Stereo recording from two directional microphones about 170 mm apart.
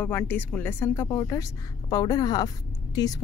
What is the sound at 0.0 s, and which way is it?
Speech, 10° left (ahead or behind).